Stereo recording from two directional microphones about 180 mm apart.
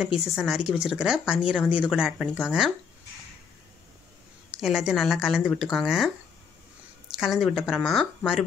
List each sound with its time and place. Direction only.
0.2 s speech: centre (ahead or behind)
4.6 s speech: 5° right (ahead or behind)
7.2 s speech: centre (ahead or behind)